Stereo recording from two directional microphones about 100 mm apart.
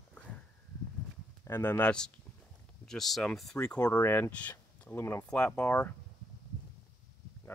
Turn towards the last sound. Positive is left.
turn(degrees=15)  # may be behind; listen again after turning